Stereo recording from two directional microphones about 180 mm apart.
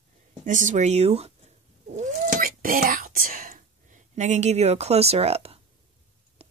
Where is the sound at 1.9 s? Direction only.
45° right (ahead or behind).